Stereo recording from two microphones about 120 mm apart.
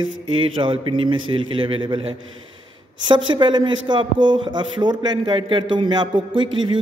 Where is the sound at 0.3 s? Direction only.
45° right (ahead or behind).